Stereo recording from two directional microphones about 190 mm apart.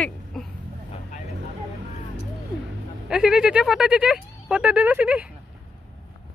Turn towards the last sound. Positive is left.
turn(degrees=-5)  # may be behind; listen again after turning